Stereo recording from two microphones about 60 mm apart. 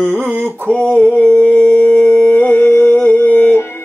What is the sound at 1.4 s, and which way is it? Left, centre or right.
Busy signal, left.